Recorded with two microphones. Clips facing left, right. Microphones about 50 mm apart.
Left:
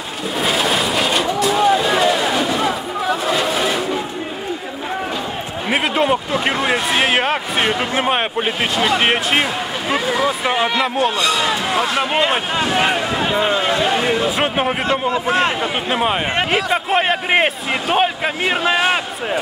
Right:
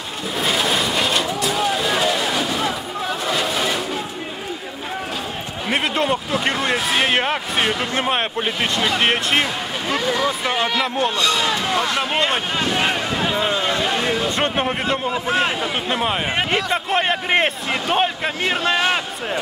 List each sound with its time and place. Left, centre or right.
0.4 s vehicle: centre
5.7 s speech: centre